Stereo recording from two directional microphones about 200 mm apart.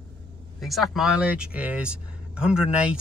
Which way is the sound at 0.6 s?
Centre (ahead or behind).